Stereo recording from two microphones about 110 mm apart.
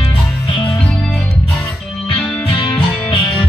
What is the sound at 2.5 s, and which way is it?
Music, 55° left (ahead or behind).